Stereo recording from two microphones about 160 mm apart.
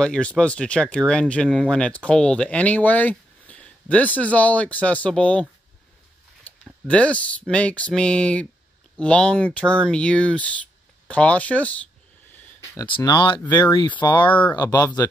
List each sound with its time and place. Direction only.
0.0 s speech: 5° left (ahead or behind)
12.8 s speech: 30° left (ahead or behind)